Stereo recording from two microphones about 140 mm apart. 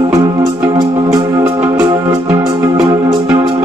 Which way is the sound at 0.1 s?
20° right (ahead or behind).